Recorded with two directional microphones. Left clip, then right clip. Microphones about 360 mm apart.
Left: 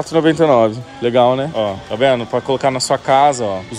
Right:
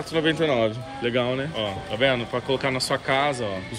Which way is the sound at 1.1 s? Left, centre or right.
Centre.